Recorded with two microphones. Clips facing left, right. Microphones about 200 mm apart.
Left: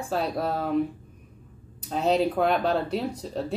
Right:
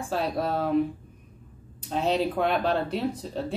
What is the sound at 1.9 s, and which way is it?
Speech, centre (ahead or behind).